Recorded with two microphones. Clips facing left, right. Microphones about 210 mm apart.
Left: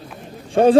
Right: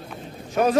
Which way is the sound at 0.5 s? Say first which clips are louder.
Left 8 dB; 30° left (ahead or behind).